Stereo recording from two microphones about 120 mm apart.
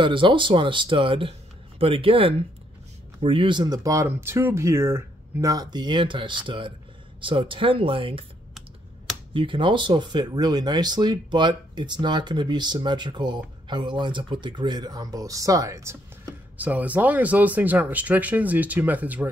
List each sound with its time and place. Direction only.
0.0 s speech: 45° right (ahead or behind)
9.3 s speech: 45° right (ahead or behind); by 16.0 s 25° right (ahead or behind)
16.5 s speech: 15° right (ahead or behind)